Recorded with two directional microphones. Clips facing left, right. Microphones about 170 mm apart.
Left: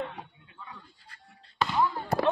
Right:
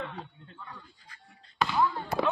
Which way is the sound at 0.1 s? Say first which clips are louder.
Right 2 dB; 10° left (ahead or behind).